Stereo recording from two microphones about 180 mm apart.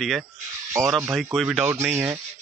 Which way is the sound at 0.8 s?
15° right (ahead or behind).